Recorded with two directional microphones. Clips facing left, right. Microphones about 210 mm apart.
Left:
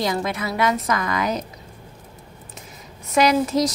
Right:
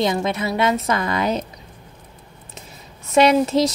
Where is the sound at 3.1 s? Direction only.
25° right (ahead or behind).